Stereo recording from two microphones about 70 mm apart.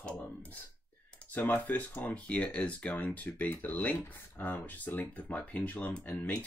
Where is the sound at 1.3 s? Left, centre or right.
Left.